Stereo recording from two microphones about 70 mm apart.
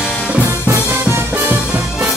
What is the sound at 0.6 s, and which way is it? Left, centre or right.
Music, right.